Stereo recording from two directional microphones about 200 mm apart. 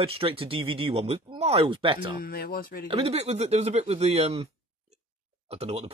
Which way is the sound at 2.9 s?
30° right (ahead or behind).